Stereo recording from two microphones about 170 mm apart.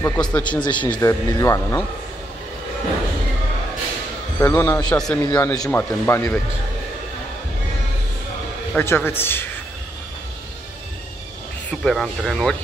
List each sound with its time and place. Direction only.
0.0 s speech: 10° left (ahead or behind)
0.5 s speech: 25° left (ahead or behind)
4.4 s speech: 15° left (ahead or behind)
4.9 s speech: 5° left (ahead or behind)
5.3 s speech: 20° left (ahead or behind)
8.7 s speech: 15° left (ahead or behind)
11.8 s speech: centre (ahead or behind)